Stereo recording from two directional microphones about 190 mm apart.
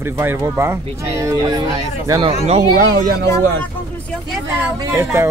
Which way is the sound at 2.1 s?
30° right (ahead or behind).